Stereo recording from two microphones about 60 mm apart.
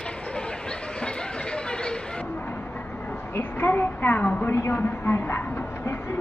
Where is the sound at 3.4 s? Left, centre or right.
Left.